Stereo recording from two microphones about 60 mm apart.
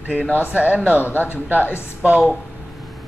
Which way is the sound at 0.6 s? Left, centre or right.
Right.